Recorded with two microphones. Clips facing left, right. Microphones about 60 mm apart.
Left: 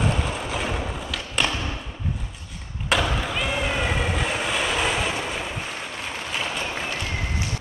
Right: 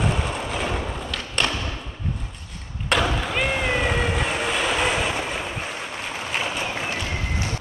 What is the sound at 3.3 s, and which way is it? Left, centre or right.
Run, right.